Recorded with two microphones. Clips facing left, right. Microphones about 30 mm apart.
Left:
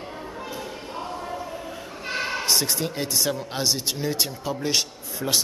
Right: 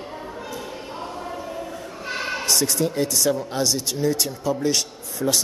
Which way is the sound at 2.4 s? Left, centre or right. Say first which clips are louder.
Right 2 dB; left.